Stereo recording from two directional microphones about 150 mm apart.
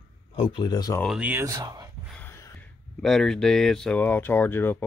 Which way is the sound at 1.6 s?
25° right (ahead or behind).